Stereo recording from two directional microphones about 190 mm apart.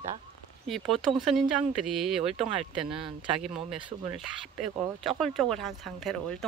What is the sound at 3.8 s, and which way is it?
Speech, 25° right (ahead or behind).